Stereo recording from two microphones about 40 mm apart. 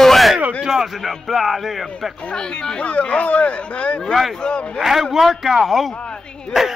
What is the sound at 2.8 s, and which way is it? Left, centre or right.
Speech, left.